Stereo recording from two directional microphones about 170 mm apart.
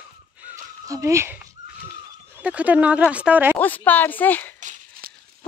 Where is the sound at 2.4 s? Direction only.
10° right (ahead or behind).